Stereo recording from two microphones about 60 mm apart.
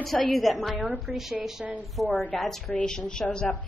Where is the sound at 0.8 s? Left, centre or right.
Right.